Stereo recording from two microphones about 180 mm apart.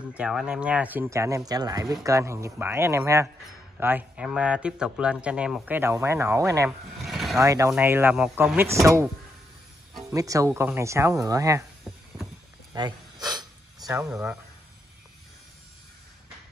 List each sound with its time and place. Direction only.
0.0 s speech: 5° right (ahead or behind)
7.0 s a sound: centre (ahead or behind)
7.3 s speech: 15° right (ahead or behind)
10.0 s speech: 20° right (ahead or behind)
11.9 s a sound: centre (ahead or behind)
12.7 s snake: 25° right (ahead or behind)
13.8 s speech: 15° right (ahead or behind)